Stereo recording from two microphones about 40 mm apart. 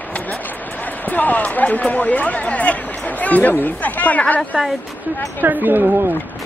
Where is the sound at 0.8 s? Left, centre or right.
Left.